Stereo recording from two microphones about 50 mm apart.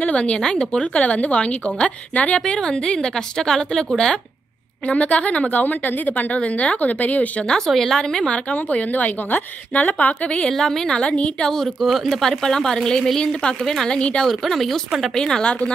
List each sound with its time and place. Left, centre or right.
0.0 s a woman's voice: left
4.8 s a woman's voice: left
7.6 s speech: centre
8.0 s a woman's voice: centre
10.5 s a woman's voice: centre
10.9 s a woman's voice: left
11.4 s a woman's voice: centre
14.2 s a woman's voice: centre